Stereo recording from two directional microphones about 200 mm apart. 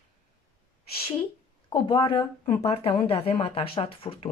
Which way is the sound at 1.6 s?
25° left (ahead or behind).